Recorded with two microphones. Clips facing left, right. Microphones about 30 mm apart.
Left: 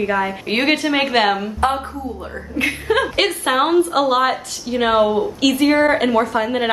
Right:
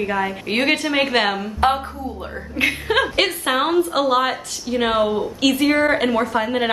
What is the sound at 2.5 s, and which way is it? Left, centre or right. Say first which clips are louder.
Speech: left 1 dB; centre.